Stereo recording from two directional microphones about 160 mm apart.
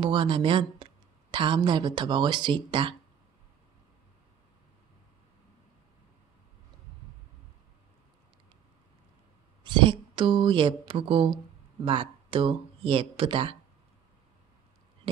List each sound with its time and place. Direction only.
0.0 s speech: 30° right (ahead or behind)
9.6 s speech: 30° right (ahead or behind)